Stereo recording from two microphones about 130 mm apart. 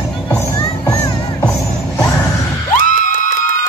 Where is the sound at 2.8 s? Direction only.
85° left.